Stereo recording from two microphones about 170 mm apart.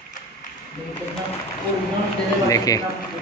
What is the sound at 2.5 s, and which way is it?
Speech, 20° left (ahead or behind).